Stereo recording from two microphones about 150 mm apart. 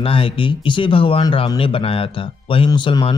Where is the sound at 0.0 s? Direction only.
40° left (ahead or behind).